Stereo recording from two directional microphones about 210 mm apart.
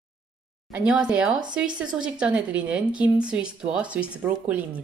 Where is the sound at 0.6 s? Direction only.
5° right (ahead or behind).